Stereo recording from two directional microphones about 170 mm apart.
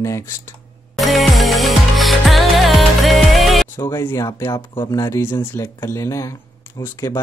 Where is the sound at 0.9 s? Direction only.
Centre (ahead or behind).